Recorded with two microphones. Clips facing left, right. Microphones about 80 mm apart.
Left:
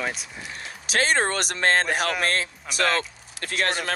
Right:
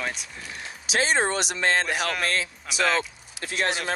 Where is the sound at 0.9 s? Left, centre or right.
Left.